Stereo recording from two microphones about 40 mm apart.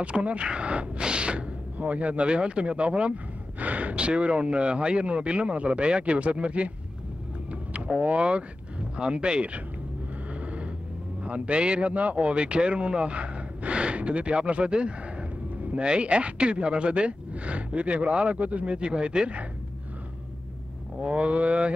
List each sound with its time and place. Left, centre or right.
0.0 s speech: right
8.2 s speech: right
10.4 s a sound: right
11.2 s speech: right
21.0 s speech: right